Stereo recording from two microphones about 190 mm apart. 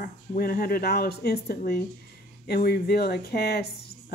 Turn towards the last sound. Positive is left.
turn(degrees=55)  # may be behind; listen again after turning